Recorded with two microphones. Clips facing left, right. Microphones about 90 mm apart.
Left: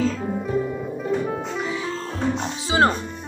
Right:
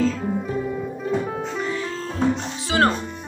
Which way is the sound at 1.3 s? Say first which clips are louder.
Even; 5° left (ahead or behind).